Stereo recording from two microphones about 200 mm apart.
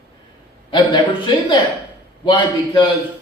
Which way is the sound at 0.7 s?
25° left (ahead or behind).